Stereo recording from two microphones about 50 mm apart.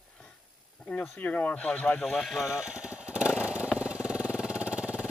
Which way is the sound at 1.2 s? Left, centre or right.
Left.